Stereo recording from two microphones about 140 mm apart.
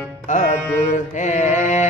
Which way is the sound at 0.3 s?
70° left (ahead or behind).